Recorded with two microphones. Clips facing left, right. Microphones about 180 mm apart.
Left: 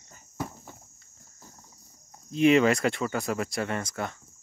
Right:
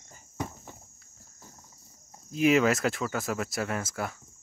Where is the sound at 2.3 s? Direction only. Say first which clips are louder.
Left 2 dB; centre (ahead or behind).